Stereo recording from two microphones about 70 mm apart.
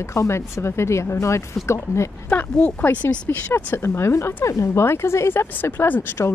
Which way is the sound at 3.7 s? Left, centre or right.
Left.